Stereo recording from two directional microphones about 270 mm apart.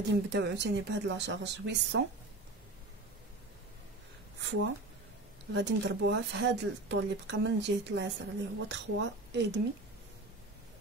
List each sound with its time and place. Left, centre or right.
0.1 s speech: right
4.4 s speech: right